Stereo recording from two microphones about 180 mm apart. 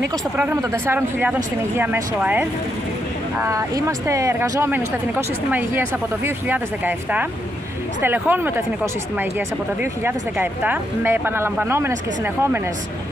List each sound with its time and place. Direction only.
0.4 s speech: 15° right (ahead or behind)
9.8 s speech: 10° right (ahead or behind)